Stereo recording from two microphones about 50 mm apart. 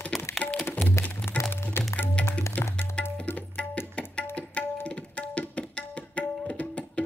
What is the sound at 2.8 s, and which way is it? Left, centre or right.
Tabla, left.